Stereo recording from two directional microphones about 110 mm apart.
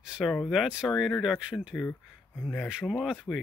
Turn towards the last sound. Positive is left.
turn(degrees=-5)  # may be behind; listen again after turning